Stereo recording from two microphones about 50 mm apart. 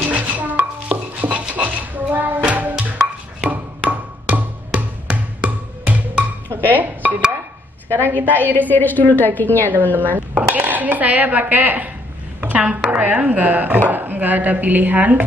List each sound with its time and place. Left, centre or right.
0.0 s chopping: right
0.8 s stir: right
1.5 s music: right
6.7 s speech: right
8.2 s speech: right
8.5 s a woman's voice: left
9.7 s a woman's voice: right